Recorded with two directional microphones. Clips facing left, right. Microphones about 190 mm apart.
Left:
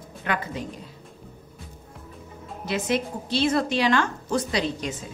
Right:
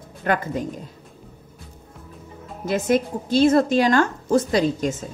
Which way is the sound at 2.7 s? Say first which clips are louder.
Right 5 dB; 45° right (ahead or behind).